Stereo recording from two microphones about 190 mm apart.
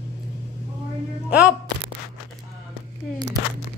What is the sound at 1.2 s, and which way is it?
Speech, 5° right (ahead or behind).